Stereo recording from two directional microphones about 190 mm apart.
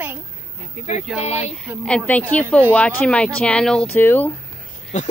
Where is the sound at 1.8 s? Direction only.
5° left (ahead or behind).